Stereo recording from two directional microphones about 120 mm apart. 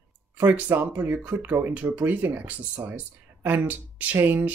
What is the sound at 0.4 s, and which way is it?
Speech, 15° right (ahead or behind).